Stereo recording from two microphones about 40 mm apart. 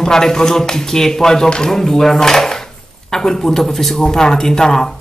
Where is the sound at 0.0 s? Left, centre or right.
Centre.